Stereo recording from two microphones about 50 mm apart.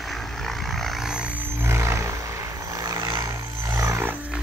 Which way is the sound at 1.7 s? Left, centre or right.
Right.